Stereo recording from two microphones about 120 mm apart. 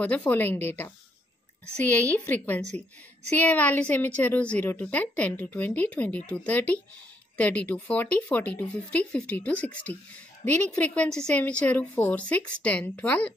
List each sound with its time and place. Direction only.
0.0 s a woman's voice: 10° left (ahead or behind)
2.1 s a woman's voice: 15° left (ahead or behind)